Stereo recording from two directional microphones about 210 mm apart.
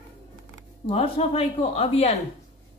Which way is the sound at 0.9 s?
25° left (ahead or behind).